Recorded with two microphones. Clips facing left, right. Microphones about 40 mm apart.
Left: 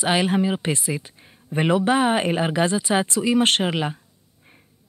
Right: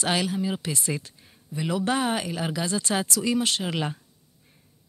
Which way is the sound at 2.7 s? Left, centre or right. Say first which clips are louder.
Left 5 dB; centre.